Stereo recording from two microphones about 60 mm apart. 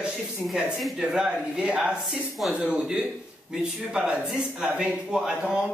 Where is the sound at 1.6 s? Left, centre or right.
Centre.